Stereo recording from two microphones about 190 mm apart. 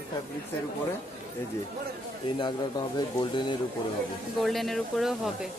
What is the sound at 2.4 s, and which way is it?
A man's voice, 20° left (ahead or behind).